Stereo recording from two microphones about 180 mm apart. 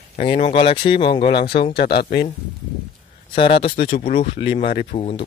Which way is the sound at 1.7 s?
60° left (ahead or behind).